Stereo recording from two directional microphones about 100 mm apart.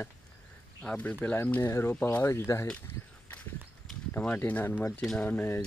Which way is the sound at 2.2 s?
30° left (ahead or behind).